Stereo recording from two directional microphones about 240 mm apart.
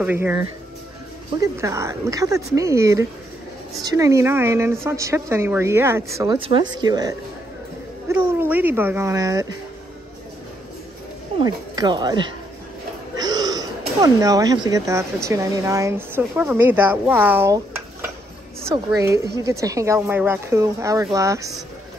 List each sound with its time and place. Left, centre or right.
0.0 s a woman's voice: centre
11.3 s a woman's voice: centre
13.1 s a sound: centre
15.2 s a woman's voice: centre
18.7 s a woman's voice: centre